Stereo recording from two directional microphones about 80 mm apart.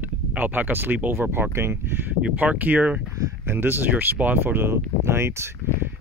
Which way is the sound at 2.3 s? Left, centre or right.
Centre.